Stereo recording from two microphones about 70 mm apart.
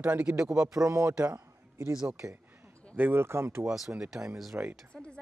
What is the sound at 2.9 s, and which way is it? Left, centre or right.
Speech, right.